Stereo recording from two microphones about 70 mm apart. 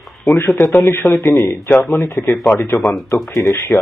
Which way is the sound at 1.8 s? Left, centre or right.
Centre.